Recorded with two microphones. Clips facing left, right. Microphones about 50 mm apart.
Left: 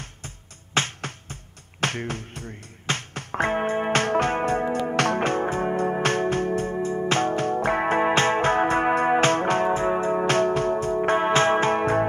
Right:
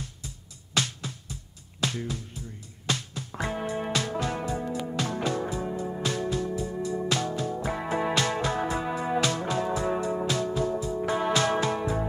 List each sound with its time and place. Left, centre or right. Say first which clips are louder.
0.7 s music: left 4 dB; left
10.2 s music: left 6 dB; left